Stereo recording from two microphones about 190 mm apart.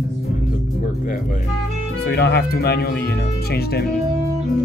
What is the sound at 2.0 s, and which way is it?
Speech, 60° left (ahead or behind).